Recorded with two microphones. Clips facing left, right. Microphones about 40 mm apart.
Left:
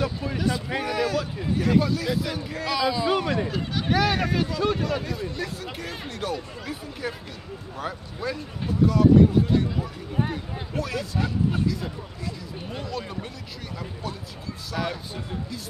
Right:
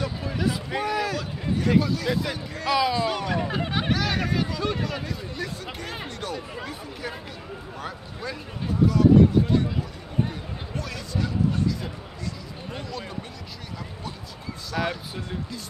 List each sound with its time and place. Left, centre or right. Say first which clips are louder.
0.0 s speech: left 1 dB; centre
3.1 s speech: left 3 dB; centre
3.4 s speech: right 2 dB; right
3.9 s speech: left 6 dB; centre
14.7 s speech: right 2 dB; centre